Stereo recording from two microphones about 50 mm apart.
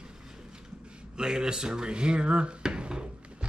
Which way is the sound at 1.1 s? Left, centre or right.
Centre.